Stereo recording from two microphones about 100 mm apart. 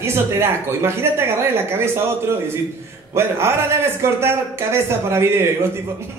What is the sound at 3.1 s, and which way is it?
A man's voice, 25° right (ahead or behind).